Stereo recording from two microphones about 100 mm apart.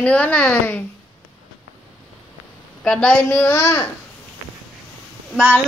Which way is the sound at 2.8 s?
10° left (ahead or behind).